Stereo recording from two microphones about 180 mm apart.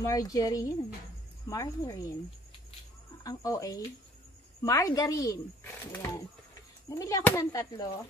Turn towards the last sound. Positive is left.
turn(degrees=20)  # may be behind; listen again after turning